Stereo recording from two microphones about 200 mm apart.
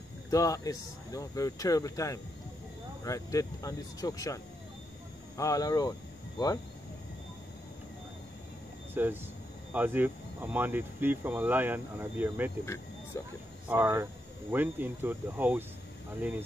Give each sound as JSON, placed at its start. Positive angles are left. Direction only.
{"t": 0.3, "sound": "speech", "side_deg": 15}
{"t": 5.4, "sound": "speech", "side_deg": 15}
{"t": 8.9, "sound": "speech", "side_deg": -10}
{"t": 12.6, "sound": "speech", "side_deg": 10}
{"t": 13.7, "sound": "speech", "side_deg": -15}